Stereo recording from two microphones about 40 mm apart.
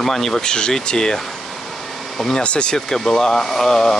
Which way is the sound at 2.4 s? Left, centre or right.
Left.